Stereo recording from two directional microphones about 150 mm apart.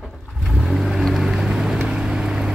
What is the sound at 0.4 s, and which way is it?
Vehicle, centre (ahead or behind).